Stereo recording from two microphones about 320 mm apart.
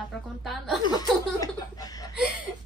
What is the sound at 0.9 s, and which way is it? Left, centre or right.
Speech, centre.